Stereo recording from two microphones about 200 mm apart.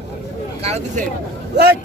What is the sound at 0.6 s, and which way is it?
Speech, 35° right (ahead or behind).